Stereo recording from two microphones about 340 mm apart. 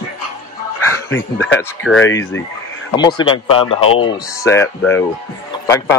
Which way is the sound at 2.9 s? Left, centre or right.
Centre.